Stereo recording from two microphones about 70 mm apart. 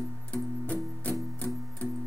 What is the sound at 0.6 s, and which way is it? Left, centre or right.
Music, left.